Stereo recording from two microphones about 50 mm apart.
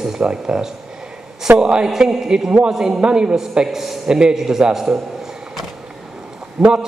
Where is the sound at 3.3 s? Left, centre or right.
Centre.